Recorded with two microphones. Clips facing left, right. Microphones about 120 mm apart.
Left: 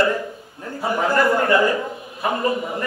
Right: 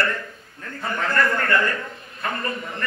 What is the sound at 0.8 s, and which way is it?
A man's voice, 15° left (ahead or behind).